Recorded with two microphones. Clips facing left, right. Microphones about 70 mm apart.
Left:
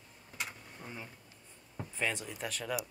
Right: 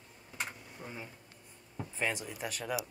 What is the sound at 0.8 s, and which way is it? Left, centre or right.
Speech, centre.